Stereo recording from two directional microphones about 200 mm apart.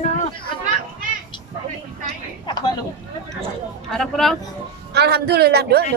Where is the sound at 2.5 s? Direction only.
20° left (ahead or behind).